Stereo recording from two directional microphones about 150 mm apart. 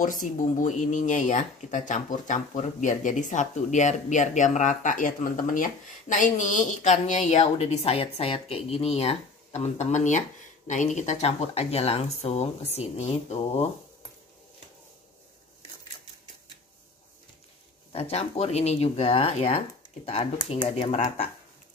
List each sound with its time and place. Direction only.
0.0 s speech: 60° left (ahead or behind)
17.9 s speech: 45° left (ahead or behind)